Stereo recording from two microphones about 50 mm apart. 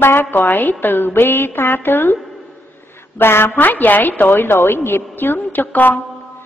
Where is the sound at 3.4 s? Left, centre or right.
Left.